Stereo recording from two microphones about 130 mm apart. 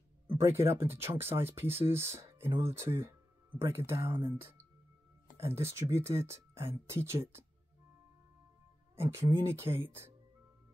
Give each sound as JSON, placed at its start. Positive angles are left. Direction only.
{"t": 0.4, "sound": "speech", "side_deg": -20}
{"t": 8.9, "sound": "speech", "side_deg": -20}